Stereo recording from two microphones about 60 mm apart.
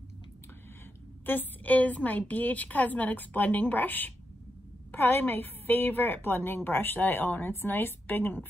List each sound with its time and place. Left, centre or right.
1.2 s a woman's voice: left